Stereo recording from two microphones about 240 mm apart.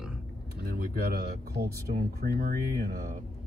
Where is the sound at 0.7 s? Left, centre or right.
Right.